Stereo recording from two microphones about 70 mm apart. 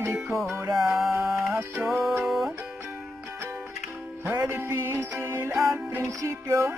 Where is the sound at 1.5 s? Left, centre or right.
Right.